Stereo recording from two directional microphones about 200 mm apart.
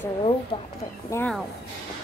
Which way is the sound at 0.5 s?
30° left (ahead or behind).